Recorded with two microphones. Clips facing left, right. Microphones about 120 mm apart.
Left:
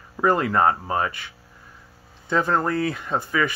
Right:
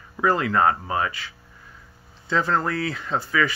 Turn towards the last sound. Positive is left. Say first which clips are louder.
# even
turn(degrees=15)  # may be behind; listen again after turning